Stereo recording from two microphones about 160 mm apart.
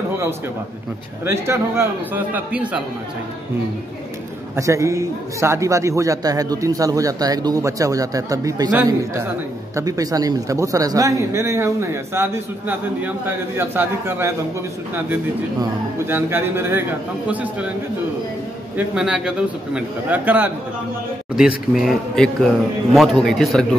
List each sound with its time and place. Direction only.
1.2 s a man's voice: 15° right (ahead or behind)
4.6 s a man's voice: 20° right (ahead or behind)
16.1 s a man's voice: 15° right (ahead or behind)
18.8 s a man's voice: 5° right (ahead or behind)